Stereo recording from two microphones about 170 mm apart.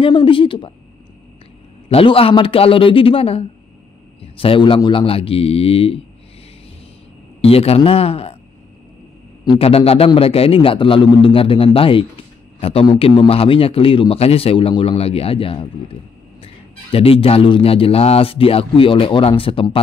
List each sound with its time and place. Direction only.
0.0 s a man's voice: 30° left (ahead or behind)
1.9 s a man's voice: 35° left (ahead or behind)
7.4 s a man's voice: 35° left (ahead or behind)
9.4 s a man's voice: 30° left (ahead or behind)